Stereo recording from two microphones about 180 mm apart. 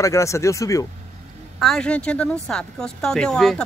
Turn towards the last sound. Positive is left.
turn(degrees=5)  # may be behind; listen again after turning